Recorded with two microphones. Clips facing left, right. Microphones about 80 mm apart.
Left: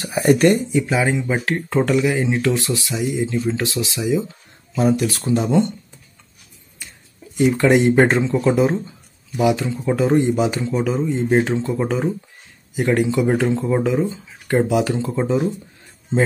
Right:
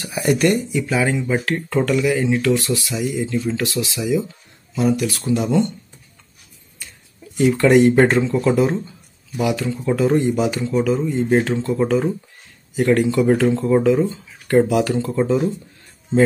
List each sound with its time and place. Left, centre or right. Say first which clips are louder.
0.0 s speech: left 3 dB; left
7.3 s speech: right 2 dB; centre
12.7 s speech: right 2 dB; centre
15.1 s speech: right 1 dB; centre